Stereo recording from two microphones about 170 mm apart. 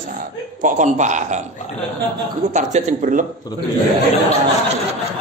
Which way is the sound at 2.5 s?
45° right (ahead or behind).